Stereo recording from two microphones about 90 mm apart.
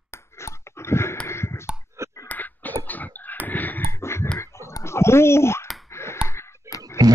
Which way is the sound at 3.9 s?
30° left (ahead or behind).